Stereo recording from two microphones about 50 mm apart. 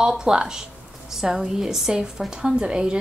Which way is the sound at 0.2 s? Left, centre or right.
Centre.